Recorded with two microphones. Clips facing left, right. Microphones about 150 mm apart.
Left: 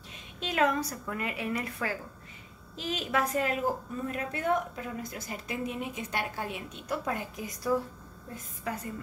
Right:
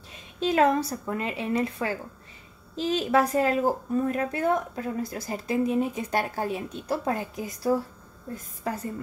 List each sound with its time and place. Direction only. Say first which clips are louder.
0.4 s a woman's voice: right 6 dB; 35° right (ahead or behind)